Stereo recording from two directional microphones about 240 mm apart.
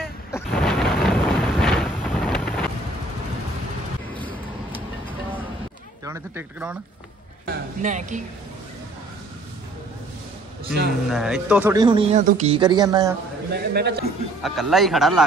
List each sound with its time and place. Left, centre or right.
0.3 s thunder: centre
6.0 s speech: centre
7.4 s speech: right
11.1 s speech: centre
11.7 s speech: centre
13.5 s a man's voice: right
14.4 s speech: centre